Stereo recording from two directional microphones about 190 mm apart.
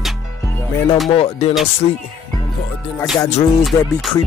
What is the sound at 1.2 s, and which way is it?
Speech, 30° left (ahead or behind).